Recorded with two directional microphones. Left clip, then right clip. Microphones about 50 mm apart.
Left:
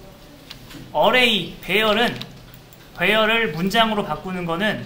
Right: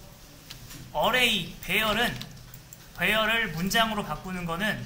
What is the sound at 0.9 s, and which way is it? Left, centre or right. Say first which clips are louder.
A man's voice: left 7 dB; right.